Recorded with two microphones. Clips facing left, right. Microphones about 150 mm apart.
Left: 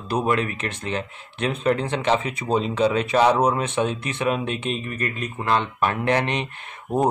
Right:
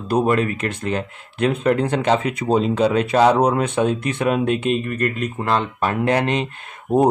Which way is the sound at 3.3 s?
60° right (ahead or behind).